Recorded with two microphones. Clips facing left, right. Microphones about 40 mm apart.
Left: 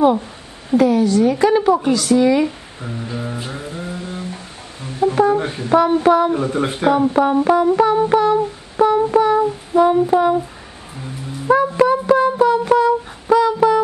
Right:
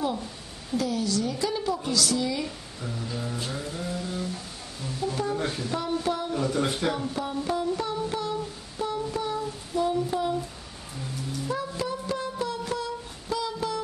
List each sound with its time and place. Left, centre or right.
0.0 s a woman's voice: left
2.4 s a sound: left
5.1 s a woman's voice: left
5.4 s speech: left
5.7 s a woman's voice: left
6.3 s speech: left
7.2 s music: left
9.8 s a woman's voice: left
11.5 s a sound: left